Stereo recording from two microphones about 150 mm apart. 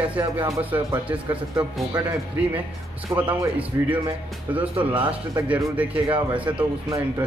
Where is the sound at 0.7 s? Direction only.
10° right (ahead or behind).